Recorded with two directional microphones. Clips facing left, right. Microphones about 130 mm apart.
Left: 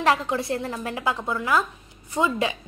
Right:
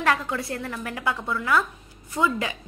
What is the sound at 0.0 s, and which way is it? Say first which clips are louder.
A woman's voice: left 2 dB; 20° left (ahead or behind).